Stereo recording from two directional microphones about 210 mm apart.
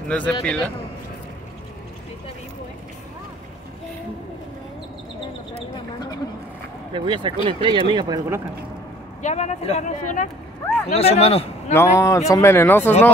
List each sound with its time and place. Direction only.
0.1 s a man's voice: 5° left (ahead or behind)
6.9 s speech: 25° right (ahead or behind)
9.2 s speech: 35° left (ahead or behind)
11.7 s a man's voice: 15° left (ahead or behind)